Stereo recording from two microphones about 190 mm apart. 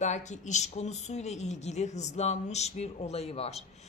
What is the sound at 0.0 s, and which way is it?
Speech, 40° left (ahead or behind).